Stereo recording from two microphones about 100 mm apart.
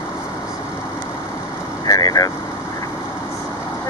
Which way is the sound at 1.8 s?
35° left (ahead or behind).